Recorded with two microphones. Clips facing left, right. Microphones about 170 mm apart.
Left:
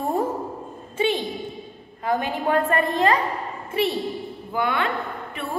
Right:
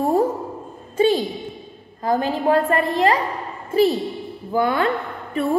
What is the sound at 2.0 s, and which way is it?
Speech, 35° right (ahead or behind).